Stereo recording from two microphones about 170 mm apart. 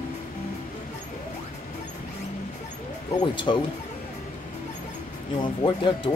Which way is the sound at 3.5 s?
30° left (ahead or behind).